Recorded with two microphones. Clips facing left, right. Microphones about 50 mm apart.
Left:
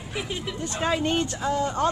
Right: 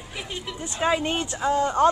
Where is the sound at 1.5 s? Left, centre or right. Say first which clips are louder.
Right 5 dB; right.